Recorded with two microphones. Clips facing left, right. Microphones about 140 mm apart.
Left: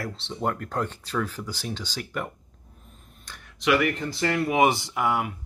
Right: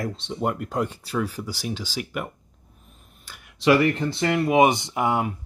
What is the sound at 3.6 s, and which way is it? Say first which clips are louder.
Speech: right 4 dB; 30° right (ahead or behind).